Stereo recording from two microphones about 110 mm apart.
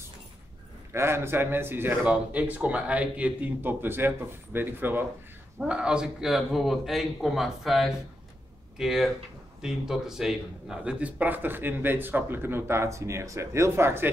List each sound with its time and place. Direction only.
0.9 s speech: 25° right (ahead or behind)
5.6 s a man's voice: 10° right (ahead or behind)